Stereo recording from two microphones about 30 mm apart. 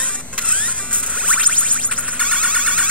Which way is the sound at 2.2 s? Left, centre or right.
Right.